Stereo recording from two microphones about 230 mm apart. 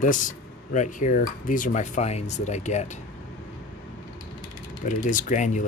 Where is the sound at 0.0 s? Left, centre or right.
Left.